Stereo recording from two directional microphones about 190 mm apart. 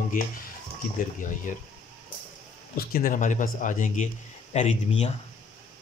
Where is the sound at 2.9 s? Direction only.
45° left (ahead or behind).